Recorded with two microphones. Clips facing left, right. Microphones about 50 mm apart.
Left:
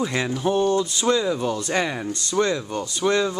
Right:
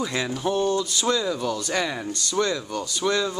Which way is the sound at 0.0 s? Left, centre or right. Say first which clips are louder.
Left 3 dB; left.